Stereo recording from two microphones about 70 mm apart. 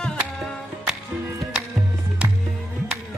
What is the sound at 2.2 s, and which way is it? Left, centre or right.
Music, centre.